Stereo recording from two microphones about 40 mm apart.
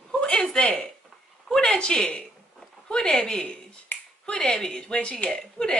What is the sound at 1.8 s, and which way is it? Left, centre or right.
A woman's voice, left.